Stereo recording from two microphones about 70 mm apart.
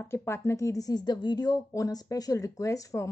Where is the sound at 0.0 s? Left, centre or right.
Left.